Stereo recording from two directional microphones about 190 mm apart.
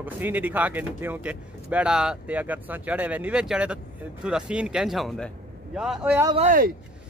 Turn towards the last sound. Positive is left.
turn(degrees=-40)  # may be behind; listen again after turning